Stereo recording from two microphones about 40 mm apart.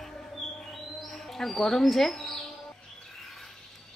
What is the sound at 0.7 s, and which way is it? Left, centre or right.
Bird, centre.